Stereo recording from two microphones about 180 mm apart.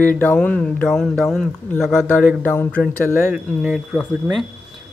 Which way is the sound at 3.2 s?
5° right (ahead or behind).